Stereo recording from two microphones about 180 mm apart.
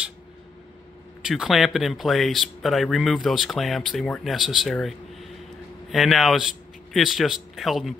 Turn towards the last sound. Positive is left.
turn(degrees=0)  # may be behind; listen again after turning